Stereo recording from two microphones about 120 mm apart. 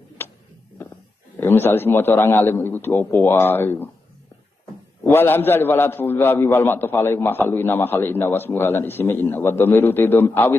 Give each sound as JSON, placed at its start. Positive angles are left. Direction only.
{"t": 0.2, "sound": "a sound", "side_deg": 20}
{"t": 1.4, "sound": "a man's voice", "side_deg": 20}
{"t": 5.0, "sound": "a man's voice", "side_deg": 15}